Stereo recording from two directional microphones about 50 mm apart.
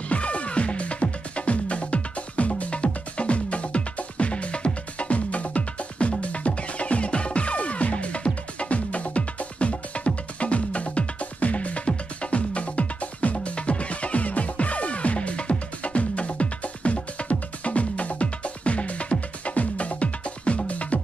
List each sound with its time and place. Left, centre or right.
0.1 s music: left